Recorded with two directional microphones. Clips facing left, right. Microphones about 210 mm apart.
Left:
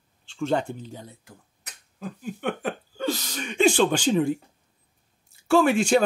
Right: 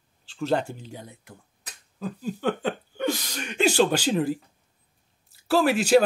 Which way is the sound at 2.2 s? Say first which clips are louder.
Right 2 dB; 30° right (ahead or behind).